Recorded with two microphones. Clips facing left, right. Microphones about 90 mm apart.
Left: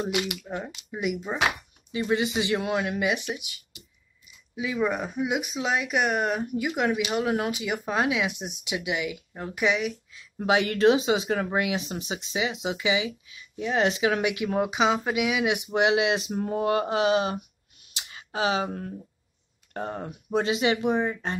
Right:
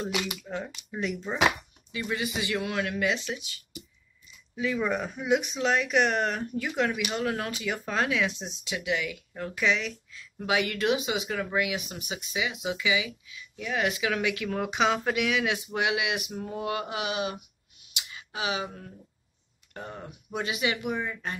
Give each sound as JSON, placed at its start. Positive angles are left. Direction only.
{"t": 0.0, "sound": "speech", "side_deg": 15}
{"t": 1.9, "sound": "speech", "side_deg": 25}
{"t": 10.4, "sound": "speech", "side_deg": 30}
{"t": 14.7, "sound": "speech", "side_deg": 5}
{"t": 16.3, "sound": "a sound", "side_deg": 45}
{"t": 19.7, "sound": "speech", "side_deg": 45}
{"t": 20.4, "sound": "speech", "side_deg": 30}